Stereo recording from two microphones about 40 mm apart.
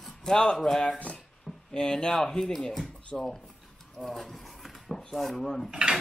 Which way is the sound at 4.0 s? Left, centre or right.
Centre.